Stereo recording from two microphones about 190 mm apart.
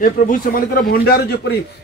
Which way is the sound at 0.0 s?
45° left (ahead or behind).